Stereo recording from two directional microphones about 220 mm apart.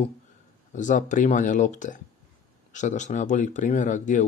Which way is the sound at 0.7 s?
35° left (ahead or behind).